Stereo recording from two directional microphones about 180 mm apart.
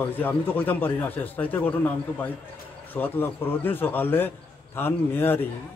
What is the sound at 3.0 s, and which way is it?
A man's voice, 10° left (ahead or behind).